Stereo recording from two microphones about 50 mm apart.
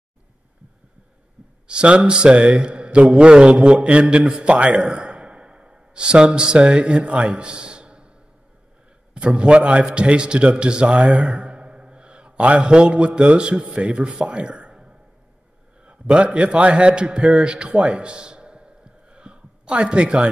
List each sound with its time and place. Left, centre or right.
1.7 s a man's voice: right
2.6 s a sound: centre
3.2 s a man's voice: centre
9.4 s a man's voice: right
11.0 s speech: centre
11.5 s a sound: right
12.6 s a man's voice: centre